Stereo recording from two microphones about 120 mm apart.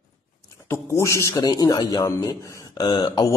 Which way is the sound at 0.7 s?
25° left (ahead or behind).